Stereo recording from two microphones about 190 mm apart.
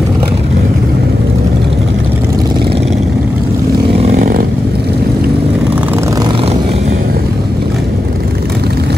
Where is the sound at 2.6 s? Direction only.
30° right (ahead or behind).